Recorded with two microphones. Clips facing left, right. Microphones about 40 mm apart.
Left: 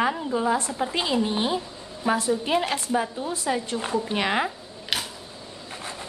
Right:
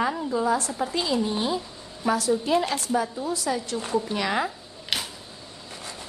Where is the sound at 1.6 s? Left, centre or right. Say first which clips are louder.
Left 2 dB; left.